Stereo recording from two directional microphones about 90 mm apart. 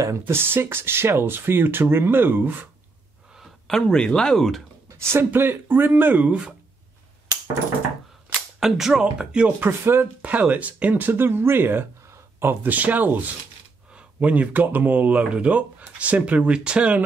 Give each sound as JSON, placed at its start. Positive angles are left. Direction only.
{"t": 0.3, "sound": "speech", "side_deg": -25}
{"t": 3.3, "sound": "a sound", "side_deg": 5}
{"t": 3.8, "sound": "speech", "side_deg": 10}
{"t": 5.1, "sound": "speech", "side_deg": -25}
{"t": 8.5, "sound": "speech", "side_deg": -5}
{"t": 9.6, "sound": "speech", "side_deg": -25}